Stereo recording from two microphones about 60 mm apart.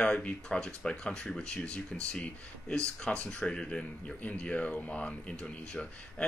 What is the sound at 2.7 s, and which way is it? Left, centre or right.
Speech, centre.